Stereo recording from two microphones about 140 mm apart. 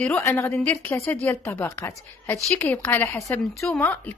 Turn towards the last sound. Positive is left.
turn(degrees=15)  # may be behind; listen again after turning